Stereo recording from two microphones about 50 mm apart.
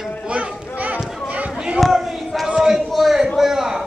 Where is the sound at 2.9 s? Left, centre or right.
Centre.